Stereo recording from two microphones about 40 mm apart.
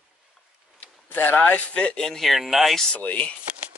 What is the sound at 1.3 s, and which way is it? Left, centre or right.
Speech, left.